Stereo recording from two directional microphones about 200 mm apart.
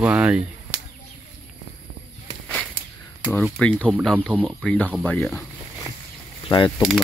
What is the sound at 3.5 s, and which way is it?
Fowl, 5° left (ahead or behind).